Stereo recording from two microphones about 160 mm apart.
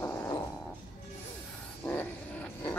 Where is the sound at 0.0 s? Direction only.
15° left (ahead or behind).